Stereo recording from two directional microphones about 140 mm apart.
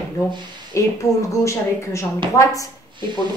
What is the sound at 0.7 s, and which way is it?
A woman's voice, 20° left (ahead or behind).